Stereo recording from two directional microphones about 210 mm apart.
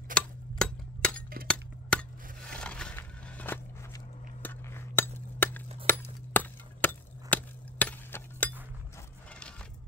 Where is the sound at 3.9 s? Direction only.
10° left (ahead or behind).